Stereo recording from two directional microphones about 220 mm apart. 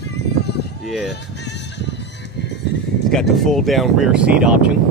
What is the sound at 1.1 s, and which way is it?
Music, 50° left (ahead or behind).